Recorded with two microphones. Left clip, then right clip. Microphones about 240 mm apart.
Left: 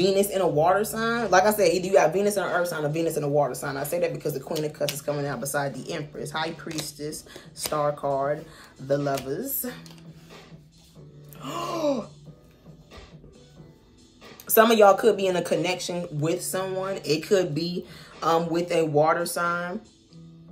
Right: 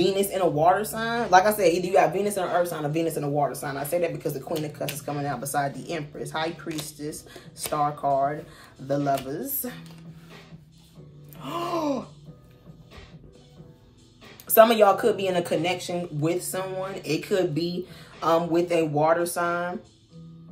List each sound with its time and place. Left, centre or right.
0.0 s speech: centre
11.3 s speech: centre
14.4 s speech: centre